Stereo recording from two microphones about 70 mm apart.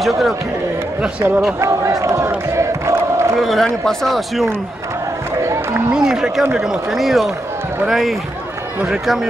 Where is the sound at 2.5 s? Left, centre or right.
Right.